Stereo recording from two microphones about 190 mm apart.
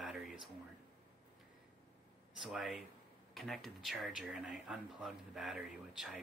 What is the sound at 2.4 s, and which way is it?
Speech, 5° right (ahead or behind).